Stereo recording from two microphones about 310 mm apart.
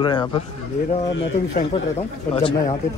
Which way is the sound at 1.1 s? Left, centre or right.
Left.